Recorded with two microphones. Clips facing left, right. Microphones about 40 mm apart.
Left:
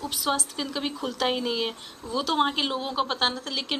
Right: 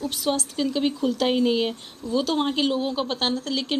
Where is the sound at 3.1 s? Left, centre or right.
Centre.